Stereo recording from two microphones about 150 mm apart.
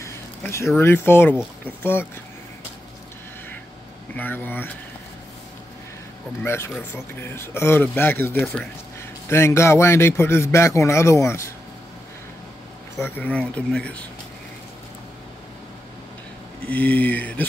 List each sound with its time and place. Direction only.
0.0 s a sound: 20° left (ahead or behind)
0.7 s speech: 15° left (ahead or behind)
4.1 s speech: 10° left (ahead or behind)
6.4 s a man's voice: 15° left (ahead or behind)
13.0 s speech: 10° left (ahead or behind)
16.6 s speech: 10° left (ahead or behind)